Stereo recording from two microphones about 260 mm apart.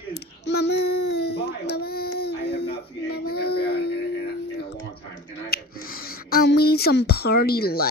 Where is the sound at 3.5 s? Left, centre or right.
Left.